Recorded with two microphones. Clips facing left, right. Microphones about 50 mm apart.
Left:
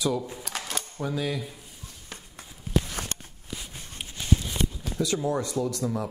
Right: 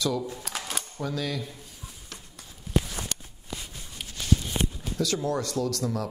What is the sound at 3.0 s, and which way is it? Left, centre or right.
Walk, left.